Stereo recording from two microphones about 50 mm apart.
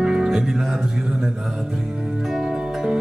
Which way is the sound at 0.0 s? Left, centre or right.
Centre.